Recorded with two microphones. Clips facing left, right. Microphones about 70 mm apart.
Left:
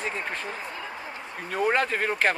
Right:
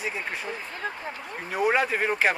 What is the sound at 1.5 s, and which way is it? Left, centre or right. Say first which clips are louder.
Speech: right 1 dB; centre.